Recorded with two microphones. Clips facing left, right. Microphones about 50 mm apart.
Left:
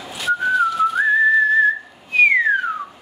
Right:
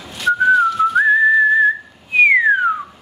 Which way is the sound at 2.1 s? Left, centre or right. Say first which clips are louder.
Right 2 dB; centre.